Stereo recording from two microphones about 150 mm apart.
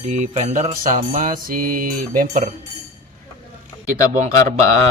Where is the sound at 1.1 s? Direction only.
60° right (ahead or behind).